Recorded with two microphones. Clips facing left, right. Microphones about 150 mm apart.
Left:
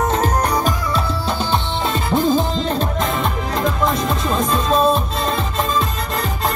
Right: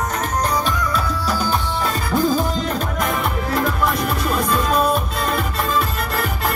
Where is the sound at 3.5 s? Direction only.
20° left (ahead or behind).